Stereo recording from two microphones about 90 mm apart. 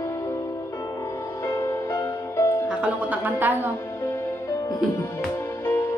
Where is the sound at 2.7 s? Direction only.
15° right (ahead or behind).